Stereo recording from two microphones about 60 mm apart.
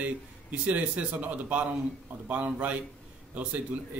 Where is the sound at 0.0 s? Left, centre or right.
Right.